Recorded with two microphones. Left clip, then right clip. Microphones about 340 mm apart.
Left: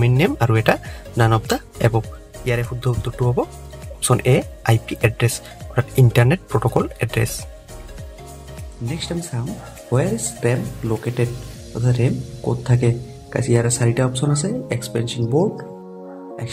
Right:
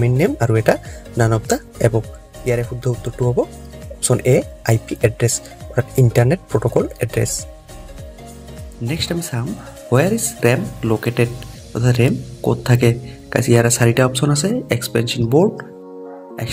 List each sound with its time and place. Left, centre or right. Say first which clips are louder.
0.0 s speech: right 1 dB; centre
8.8 s speech: right 5 dB; centre